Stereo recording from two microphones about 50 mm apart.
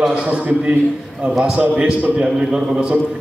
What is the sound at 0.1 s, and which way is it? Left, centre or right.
A man's voice, right.